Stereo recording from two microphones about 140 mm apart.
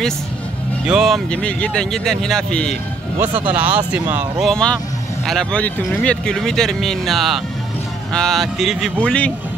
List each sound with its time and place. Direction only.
0.8 s speech: 5° right (ahead or behind)
3.2 s speech: 15° right (ahead or behind)
4.5 s speech: 5° left (ahead or behind)